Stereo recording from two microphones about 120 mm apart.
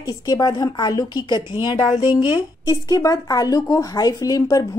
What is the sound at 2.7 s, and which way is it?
A woman's voice, 30° left (ahead or behind).